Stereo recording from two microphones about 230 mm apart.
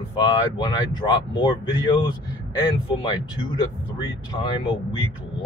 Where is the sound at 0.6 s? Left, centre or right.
Centre.